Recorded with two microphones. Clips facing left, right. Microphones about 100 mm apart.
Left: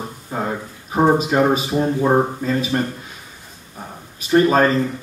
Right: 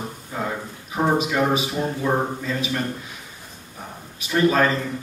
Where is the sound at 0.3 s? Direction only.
40° left (ahead or behind).